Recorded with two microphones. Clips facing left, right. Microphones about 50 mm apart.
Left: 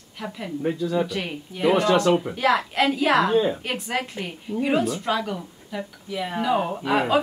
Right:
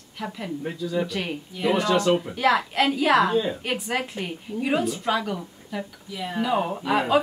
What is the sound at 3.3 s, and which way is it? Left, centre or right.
Speech, left.